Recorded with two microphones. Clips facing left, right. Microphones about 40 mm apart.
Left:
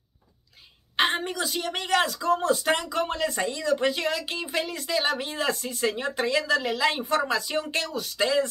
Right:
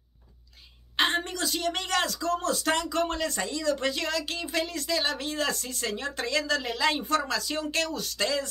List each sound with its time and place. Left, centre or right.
0.9 s a woman's voice: centre